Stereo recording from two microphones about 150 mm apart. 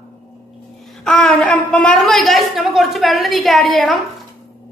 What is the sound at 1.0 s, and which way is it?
A woman's voice, 5° left (ahead or behind).